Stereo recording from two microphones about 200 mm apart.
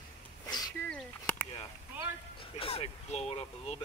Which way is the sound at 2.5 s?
30° left (ahead or behind).